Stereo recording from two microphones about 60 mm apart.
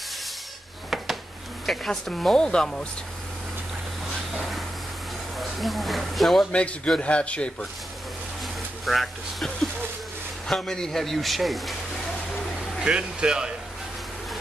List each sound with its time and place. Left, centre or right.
0.8 s a sound: centre
1.7 s a man's voice: centre
4.4 s a sound: centre
5.4 s a man's voice: centre
6.5 s a man's voice: centre
8.8 s a man's voice: centre
12.8 s speech: centre